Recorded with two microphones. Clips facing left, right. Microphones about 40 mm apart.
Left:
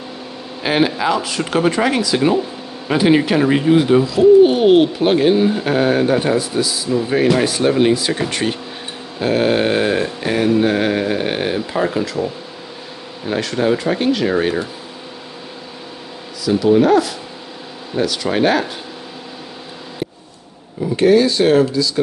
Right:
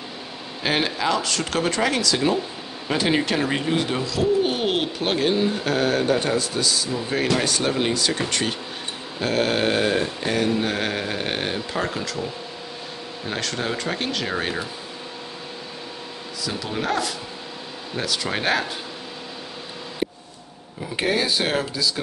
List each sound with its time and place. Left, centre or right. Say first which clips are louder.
0.6 s speech: left 6 dB; centre
16.4 s speech: left 14 dB; centre
20.9 s speech: left 10 dB; centre